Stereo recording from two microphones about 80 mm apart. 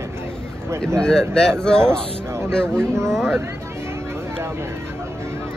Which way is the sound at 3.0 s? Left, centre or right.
Centre.